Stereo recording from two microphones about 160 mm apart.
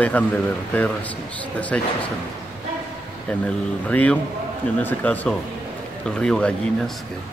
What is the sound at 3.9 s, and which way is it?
Speech, 10° left (ahead or behind).